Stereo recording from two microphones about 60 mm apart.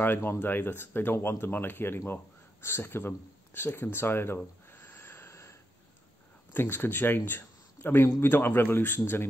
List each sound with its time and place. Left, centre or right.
0.0 s speech: left
4.6 s wheeze: left
6.5 s speech: left